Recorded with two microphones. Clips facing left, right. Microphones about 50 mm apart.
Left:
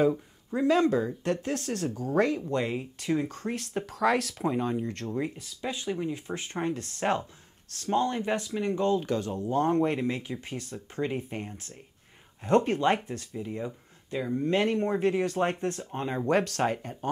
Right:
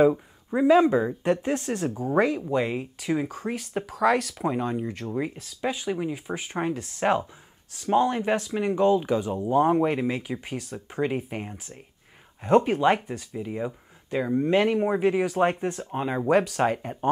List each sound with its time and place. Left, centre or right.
0.0 s speech: right
2.2 s speech: centre
5.1 s speech: centre
13.3 s speech: centre
14.6 s speech: centre